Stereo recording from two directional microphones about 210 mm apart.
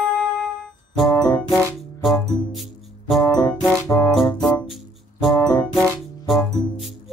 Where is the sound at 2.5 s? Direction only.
Centre (ahead or behind).